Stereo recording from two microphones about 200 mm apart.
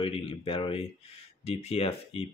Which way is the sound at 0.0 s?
25° left (ahead or behind).